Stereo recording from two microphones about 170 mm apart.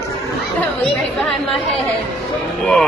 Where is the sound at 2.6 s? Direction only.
5° left (ahead or behind).